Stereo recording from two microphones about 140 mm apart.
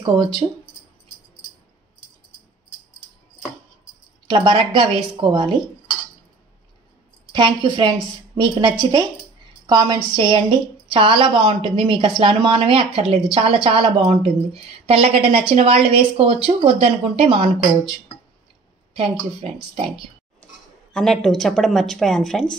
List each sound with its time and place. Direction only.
0.4 s a woman's voice: 25° right (ahead or behind)
4.3 s a woman's voice: 35° right (ahead or behind)
7.3 s a woman's voice: 35° right (ahead or behind)
18.9 s a woman's voice: 40° right (ahead or behind)
20.9 s speech: 5° left (ahead or behind)